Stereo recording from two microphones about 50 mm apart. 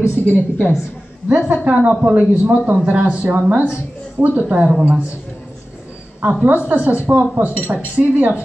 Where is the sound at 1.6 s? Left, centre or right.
Right.